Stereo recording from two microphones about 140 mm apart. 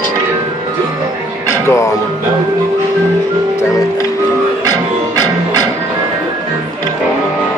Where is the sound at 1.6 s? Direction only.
20° left (ahead or behind).